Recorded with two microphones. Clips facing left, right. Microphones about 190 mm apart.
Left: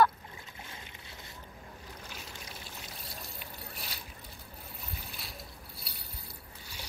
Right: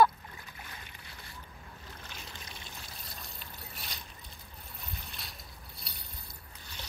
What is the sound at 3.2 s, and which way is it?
Pour, centre (ahead or behind).